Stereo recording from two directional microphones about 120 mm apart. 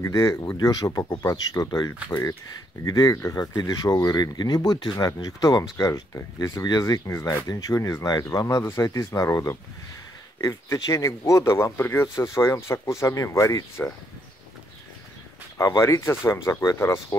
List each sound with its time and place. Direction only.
0.0 s speech: 25° left (ahead or behind)
15.5 s speech: 25° left (ahead or behind)